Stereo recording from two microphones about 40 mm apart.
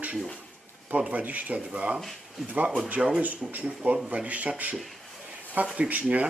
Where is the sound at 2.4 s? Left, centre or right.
Right.